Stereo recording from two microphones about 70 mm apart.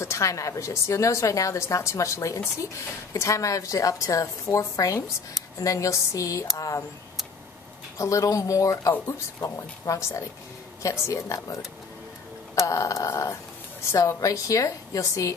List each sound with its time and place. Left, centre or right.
0.0 s a woman's voice: left
8.0 s a woman's voice: left
12.6 s a woman's voice: left